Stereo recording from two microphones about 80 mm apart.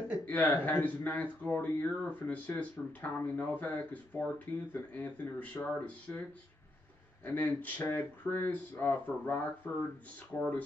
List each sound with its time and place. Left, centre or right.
0.2 s speech: left
7.2 s speech: left